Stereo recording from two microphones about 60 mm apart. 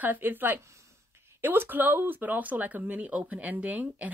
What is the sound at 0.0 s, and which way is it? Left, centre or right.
A woman's voice, right.